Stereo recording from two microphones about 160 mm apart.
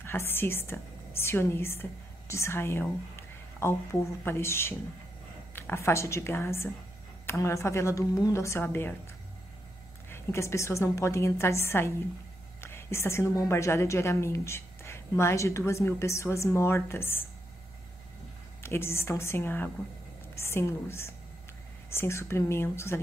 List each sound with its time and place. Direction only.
0.0 s a woman's voice: 15° left (ahead or behind)
10.0 s a woman's voice: 15° left (ahead or behind)
18.6 s a woman's voice: 15° left (ahead or behind)